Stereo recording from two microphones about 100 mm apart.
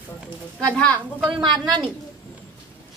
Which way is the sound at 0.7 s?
15° left (ahead or behind).